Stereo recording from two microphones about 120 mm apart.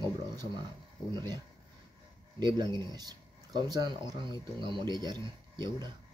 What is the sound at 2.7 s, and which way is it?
Speech, 30° left (ahead or behind).